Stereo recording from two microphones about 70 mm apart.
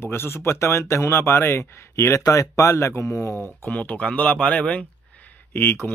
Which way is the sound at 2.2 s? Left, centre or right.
Left.